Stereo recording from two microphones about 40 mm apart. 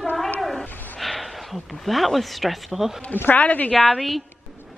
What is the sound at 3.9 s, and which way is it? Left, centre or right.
Speech, centre.